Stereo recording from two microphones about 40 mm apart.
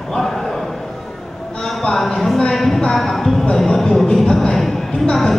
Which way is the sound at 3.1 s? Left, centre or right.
Centre.